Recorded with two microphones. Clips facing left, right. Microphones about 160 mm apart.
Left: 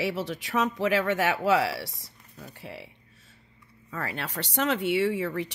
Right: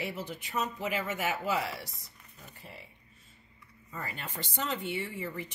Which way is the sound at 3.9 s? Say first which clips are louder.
Left 7 dB; 80° left.